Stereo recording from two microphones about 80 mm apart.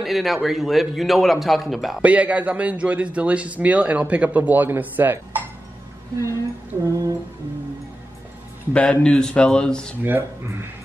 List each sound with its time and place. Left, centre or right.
0.0 s a man's voice: centre
2.0 s a man's voice: centre
6.9 s music: right
8.7 s a man's voice: centre
10.0 s speech: right